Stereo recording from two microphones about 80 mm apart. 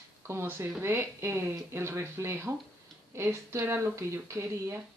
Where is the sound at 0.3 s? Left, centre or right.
Right.